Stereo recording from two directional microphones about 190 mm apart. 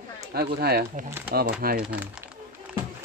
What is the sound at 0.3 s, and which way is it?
Speech, 55° right (ahead or behind).